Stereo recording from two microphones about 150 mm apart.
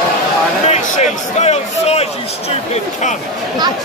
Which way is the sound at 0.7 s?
50° left (ahead or behind).